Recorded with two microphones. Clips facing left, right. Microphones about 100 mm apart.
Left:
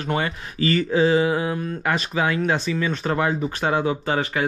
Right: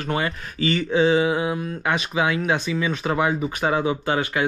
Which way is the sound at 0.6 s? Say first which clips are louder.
Left 1 dB; 40° left (ahead or behind).